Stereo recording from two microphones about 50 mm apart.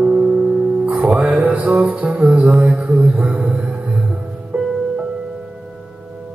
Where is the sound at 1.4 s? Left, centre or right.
Right.